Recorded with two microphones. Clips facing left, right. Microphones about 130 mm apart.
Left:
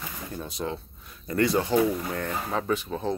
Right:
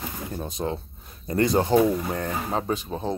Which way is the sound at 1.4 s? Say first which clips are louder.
Right 2 dB; 45° right (ahead or behind).